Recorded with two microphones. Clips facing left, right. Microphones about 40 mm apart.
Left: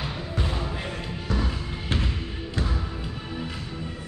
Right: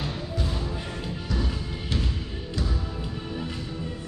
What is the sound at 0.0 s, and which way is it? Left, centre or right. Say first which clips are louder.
Music: even; centre.